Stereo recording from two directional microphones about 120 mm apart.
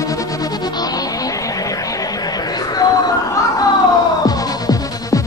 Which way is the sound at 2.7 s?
35° left (ahead or behind).